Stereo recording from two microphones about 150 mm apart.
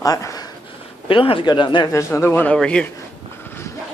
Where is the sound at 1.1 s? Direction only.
35° left (ahead or behind).